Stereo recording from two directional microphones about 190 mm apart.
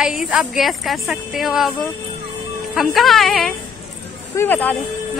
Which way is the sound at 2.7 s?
Centre (ahead or behind).